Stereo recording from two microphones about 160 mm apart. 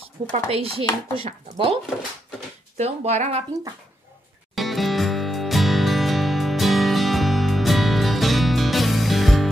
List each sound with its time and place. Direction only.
0.3 s speech: 35° right (ahead or behind)
2.8 s speech: 45° right (ahead or behind)
4.6 s music: centre (ahead or behind)